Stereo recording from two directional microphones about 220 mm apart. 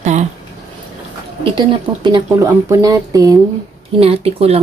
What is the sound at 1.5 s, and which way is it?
Speech, 20° right (ahead or behind).